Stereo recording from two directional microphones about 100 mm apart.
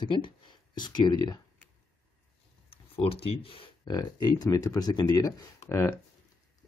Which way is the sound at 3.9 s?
40° left (ahead or behind).